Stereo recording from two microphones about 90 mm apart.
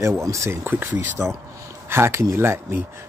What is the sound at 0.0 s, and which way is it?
Speech, 35° right (ahead or behind).